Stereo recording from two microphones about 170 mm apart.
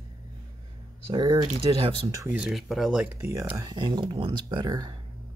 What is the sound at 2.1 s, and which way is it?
Speech, 10° right (ahead or behind).